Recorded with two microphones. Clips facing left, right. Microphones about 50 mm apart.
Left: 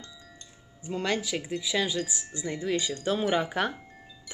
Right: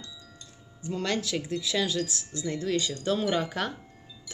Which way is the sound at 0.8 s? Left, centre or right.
Centre.